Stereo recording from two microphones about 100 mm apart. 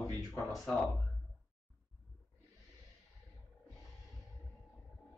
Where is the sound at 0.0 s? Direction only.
30° left (ahead or behind).